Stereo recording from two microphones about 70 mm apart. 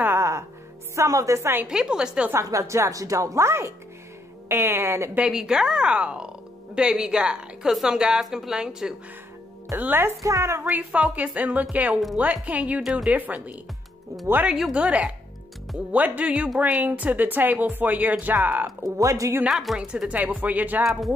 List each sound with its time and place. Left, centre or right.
0.2 s music: right
0.9 s a woman's voice: right
1.7 s a woman's voice: centre
2.3 s a woman's voice: right
5.3 s a woman's voice: centre
9.8 s a woman's voice: right
10.2 s a woman's voice: right
10.6 s a woman's voice: right
18.8 s a woman's voice: right
19.5 s a woman's voice: centre
19.9 s a woman's voice: centre